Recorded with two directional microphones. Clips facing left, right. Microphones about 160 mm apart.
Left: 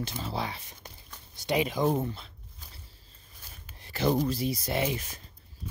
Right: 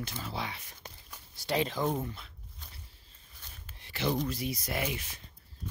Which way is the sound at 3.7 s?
40° left (ahead or behind).